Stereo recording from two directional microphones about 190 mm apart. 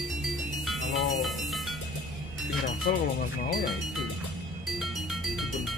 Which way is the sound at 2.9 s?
55° left (ahead or behind).